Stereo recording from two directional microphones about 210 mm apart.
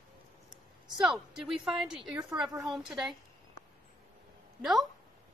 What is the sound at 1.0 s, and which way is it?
A woman's voice, centre (ahead or behind).